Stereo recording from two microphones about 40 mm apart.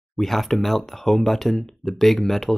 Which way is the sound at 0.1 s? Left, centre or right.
Centre.